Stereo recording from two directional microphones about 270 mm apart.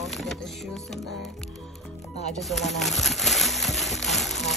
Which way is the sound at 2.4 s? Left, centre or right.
Centre.